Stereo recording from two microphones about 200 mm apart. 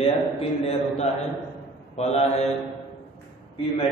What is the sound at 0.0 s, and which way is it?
A man's voice, 30° left (ahead or behind).